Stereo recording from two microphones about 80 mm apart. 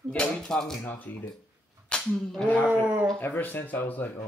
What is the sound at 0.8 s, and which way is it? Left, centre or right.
Speech, left.